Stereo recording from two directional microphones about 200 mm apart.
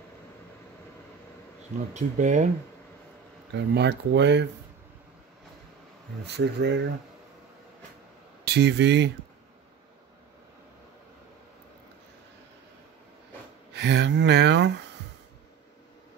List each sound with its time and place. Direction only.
2.0 s speech: 40° right (ahead or behind)
3.5 s speech: 60° right (ahead or behind)
6.2 s speech: 60° right (ahead or behind)
8.5 s speech: 60° right (ahead or behind)
13.7 s speech: 60° right (ahead or behind)